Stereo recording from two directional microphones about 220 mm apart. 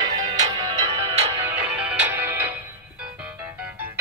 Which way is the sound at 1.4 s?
5° right (ahead or behind).